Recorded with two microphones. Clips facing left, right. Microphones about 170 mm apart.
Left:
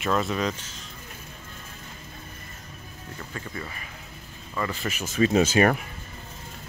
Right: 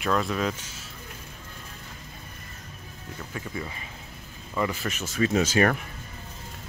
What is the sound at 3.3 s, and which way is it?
Speech, 10° right (ahead or behind).